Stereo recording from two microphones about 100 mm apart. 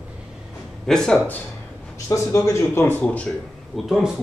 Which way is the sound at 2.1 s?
30° left (ahead or behind).